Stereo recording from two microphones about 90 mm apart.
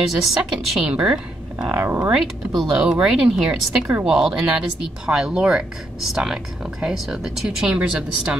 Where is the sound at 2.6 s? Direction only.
5° right (ahead or behind).